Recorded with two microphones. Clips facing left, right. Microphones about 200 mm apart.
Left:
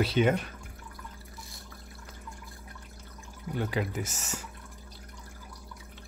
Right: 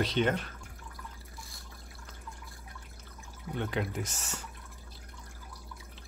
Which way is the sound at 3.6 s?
5° left (ahead or behind).